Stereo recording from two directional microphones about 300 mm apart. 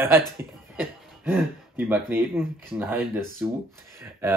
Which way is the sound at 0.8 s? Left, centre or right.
Centre.